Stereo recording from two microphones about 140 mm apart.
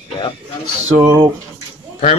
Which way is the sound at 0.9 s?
20° right (ahead or behind).